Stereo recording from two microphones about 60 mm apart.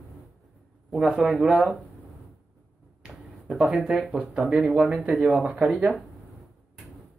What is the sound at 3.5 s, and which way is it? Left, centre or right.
Speech, centre.